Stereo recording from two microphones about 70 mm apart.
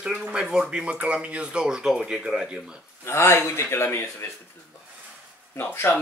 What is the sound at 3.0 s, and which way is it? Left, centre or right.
A man's voice, left.